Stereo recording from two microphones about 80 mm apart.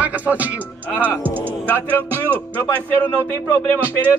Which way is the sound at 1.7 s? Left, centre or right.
Left.